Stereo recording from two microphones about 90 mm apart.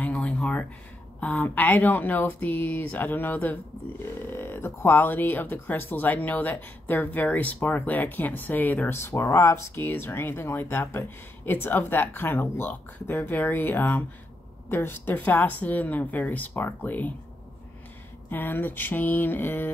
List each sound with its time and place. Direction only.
0.0 s a sound: 15° left (ahead or behind)
1.2 s speech: 15° left (ahead or behind)
18.3 s speech: 20° left (ahead or behind)